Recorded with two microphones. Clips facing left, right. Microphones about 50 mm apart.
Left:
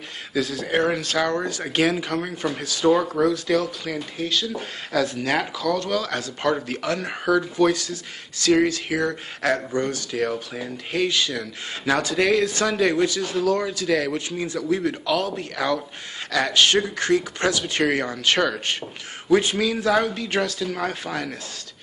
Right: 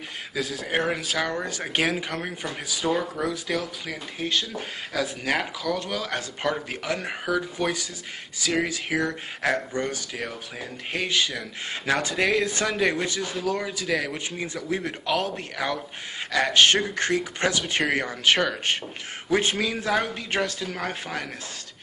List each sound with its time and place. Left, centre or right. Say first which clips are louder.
0.3 s a man's voice: left 4 dB; centre
4.2 s a man's voice: left 1 dB; right
4.9 s a man's voice: left 4 dB; centre; by 15.4 s right
15.5 s a man's voice: left 4 dB; centre